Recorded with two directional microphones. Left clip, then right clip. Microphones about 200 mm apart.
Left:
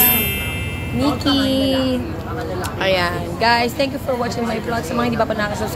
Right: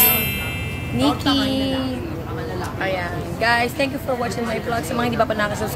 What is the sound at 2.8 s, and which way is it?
Speech, 55° left (ahead or behind).